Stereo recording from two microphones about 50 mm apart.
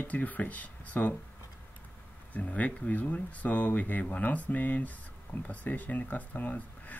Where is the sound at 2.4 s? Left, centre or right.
Left.